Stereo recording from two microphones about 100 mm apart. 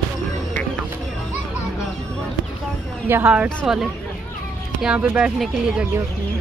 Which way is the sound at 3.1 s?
20° right (ahead or behind).